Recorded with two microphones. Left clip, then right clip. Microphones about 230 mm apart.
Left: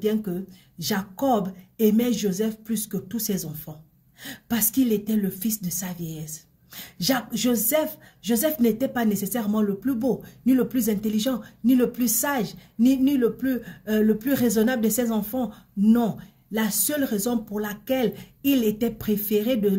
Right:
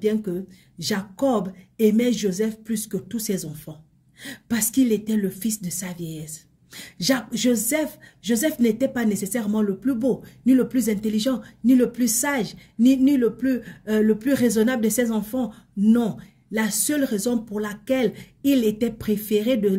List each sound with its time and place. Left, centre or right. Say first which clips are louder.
0.0 s speech: right 2 dB; centre
1.9 s speech: right 2 dB; centre
4.7 s a woman's voice: right 2 dB; centre